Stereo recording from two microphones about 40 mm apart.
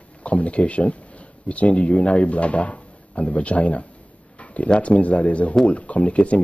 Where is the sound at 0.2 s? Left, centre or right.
Left.